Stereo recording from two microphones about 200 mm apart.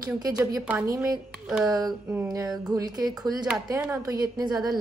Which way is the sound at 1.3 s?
Centre (ahead or behind).